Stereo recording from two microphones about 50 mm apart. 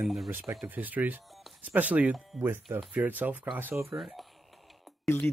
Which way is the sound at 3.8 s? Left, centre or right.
Right.